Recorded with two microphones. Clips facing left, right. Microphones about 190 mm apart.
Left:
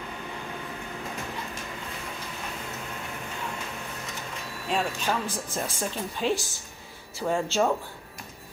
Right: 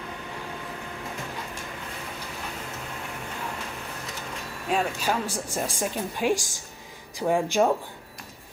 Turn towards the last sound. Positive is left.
turn(degrees=-15)  # may be behind; listen again after turning